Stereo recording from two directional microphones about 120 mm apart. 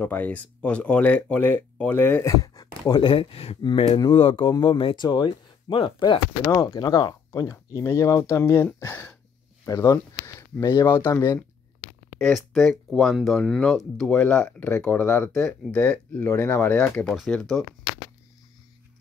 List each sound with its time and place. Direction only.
0.0 s speech: 15° left (ahead or behind)
2.3 s speech: 30° left (ahead or behind)
6.4 s speech: 30° left (ahead or behind)
9.7 s speech: 30° left (ahead or behind)
11.1 s speech: 20° left (ahead or behind)
12.2 s speech: 5° left (ahead or behind)